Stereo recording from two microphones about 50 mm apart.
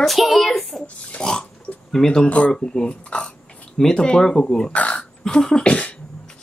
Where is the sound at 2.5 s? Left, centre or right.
Centre.